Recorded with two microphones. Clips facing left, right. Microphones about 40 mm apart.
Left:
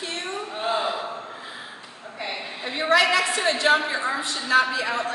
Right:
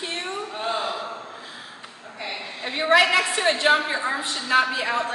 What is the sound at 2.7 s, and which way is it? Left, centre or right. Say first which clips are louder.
A woman's voice: right 1 dB; centre.